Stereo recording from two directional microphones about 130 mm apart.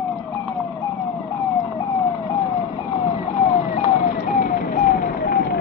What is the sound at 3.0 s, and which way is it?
Emergency vehicle, 45° left (ahead or behind).